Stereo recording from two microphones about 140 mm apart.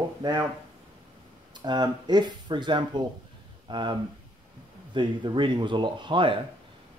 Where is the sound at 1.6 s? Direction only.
30° right (ahead or behind).